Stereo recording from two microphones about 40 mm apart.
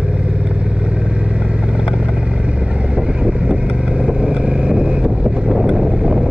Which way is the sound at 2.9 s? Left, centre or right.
Right.